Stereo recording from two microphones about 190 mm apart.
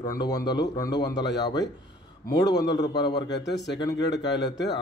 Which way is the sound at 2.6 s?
20° left (ahead or behind).